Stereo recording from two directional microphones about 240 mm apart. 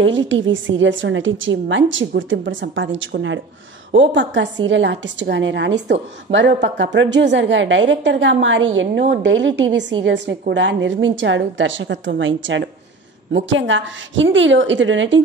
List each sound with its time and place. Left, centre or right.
0.0 s a woman's voice: right